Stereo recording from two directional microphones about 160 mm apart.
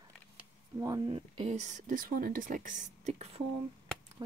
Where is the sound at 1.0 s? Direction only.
35° right (ahead or behind).